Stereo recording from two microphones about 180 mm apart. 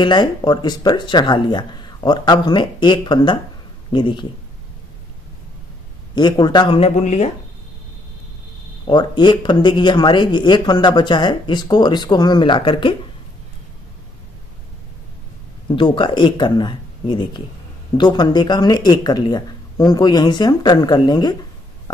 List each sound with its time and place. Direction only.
0.0 s speech: 25° left (ahead or behind)
6.1 s speech: 25° left (ahead or behind); by 7.2 s 40° left (ahead or behind)
8.8 s speech: 25° left (ahead or behind)
15.7 s speech: 25° left (ahead or behind)